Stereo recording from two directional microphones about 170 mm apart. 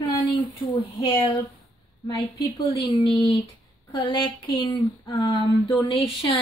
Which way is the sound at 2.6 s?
35° left (ahead or behind).